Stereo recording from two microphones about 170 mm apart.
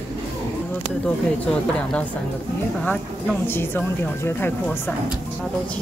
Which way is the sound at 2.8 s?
10° left (ahead or behind).